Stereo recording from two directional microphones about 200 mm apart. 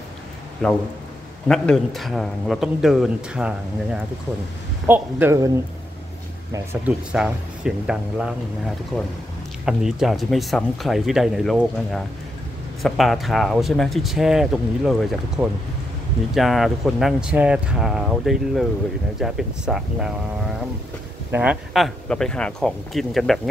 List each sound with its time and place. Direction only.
0.6 s speech: centre (ahead or behind)
6.5 s speech: 15° right (ahead or behind)
21.3 s speech: 5° right (ahead or behind)